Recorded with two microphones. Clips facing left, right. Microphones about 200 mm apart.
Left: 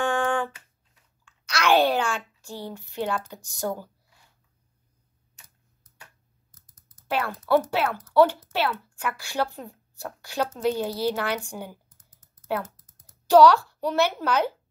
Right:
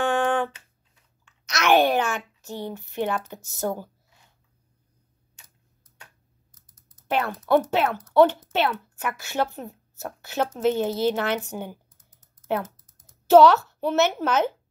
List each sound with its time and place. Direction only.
0.0 s a sound: 20° right (ahead or behind)
1.2 s speech: 20° right (ahead or behind)
7.1 s speech: 20° right (ahead or behind)
13.3 s speech: 20° right (ahead or behind)